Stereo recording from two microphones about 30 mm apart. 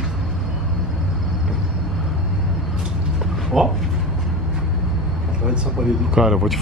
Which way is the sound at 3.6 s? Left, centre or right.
Centre.